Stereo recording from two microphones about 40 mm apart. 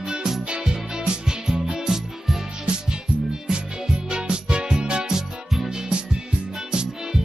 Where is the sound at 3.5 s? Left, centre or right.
Centre.